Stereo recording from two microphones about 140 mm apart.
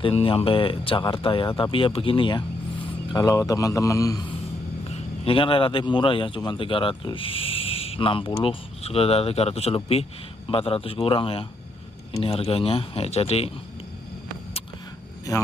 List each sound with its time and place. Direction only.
0.0 s speech: 40° left (ahead or behind)
3.1 s a man's voice: 25° left (ahead or behind)
4.8 s a man's voice: 45° left (ahead or behind)